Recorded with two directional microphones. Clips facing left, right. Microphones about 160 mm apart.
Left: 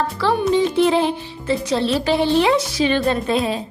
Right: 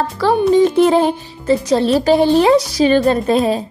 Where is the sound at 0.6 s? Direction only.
45° right (ahead or behind).